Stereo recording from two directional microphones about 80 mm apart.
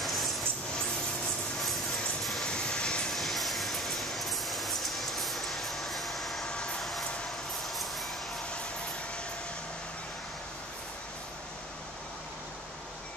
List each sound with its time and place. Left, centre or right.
0.0 s a sound: centre
1.6 s vehicle: centre
3.2 s vehicle: centre